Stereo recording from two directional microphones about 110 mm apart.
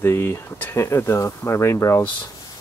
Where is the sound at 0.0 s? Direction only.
20° left (ahead or behind).